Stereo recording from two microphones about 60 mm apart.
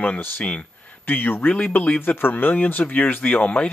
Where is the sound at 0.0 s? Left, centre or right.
Left.